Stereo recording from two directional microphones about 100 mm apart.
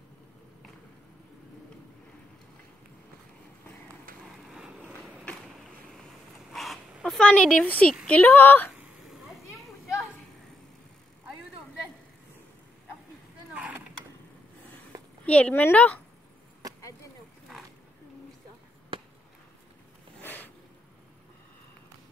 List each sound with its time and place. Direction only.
4.2 s vehicle: 5° right (ahead or behind)
6.5 s zipper: centre (ahead or behind)
8.1 s speech: 15° left (ahead or behind)
13.5 s boat: 10° right (ahead or behind)
15.2 s speech: 15° left (ahead or behind)
20.2 s a sound: 20° left (ahead or behind)